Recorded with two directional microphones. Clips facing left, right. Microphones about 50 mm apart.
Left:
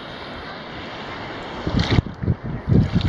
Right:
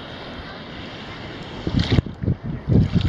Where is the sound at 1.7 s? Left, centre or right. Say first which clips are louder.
Even; centre.